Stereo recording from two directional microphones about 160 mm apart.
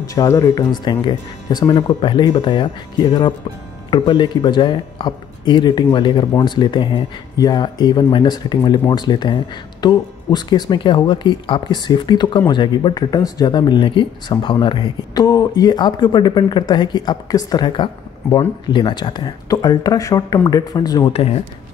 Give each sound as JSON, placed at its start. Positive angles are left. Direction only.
{"t": 0.0, "sound": "speech", "side_deg": 20}
{"t": 21.1, "sound": "speech", "side_deg": 40}